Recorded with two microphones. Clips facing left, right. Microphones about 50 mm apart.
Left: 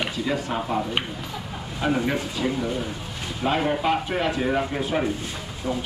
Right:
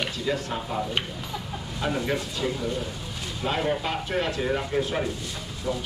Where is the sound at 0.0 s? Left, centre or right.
Centre.